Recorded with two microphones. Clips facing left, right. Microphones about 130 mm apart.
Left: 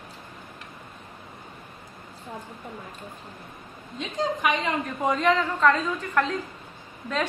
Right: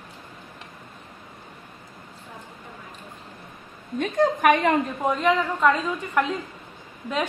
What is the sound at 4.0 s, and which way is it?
Speech, 55° right (ahead or behind).